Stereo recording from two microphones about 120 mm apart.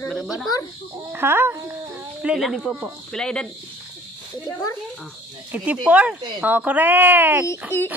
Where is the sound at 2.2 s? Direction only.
5° right (ahead or behind).